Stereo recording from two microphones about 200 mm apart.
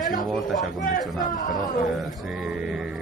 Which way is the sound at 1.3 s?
40° left (ahead or behind).